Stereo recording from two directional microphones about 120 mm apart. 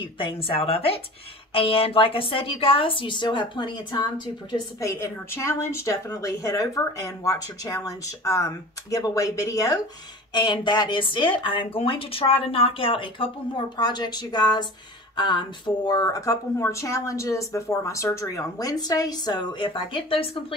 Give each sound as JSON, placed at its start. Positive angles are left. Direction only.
{"t": 0.0, "sound": "speech", "side_deg": 45}
{"t": 4.7, "sound": "speech", "side_deg": 25}
{"t": 13.7, "sound": "speech", "side_deg": 35}